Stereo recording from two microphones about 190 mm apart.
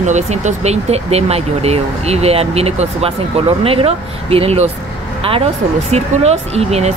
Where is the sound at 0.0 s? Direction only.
40° right (ahead or behind).